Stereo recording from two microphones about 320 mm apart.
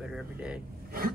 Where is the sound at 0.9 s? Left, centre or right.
Right.